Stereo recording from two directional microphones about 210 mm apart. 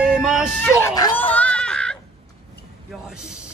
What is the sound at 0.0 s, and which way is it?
Vehicle, 5° right (ahead or behind).